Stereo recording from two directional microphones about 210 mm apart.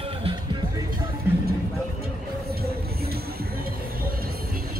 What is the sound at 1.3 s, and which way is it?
Music, 10° right (ahead or behind).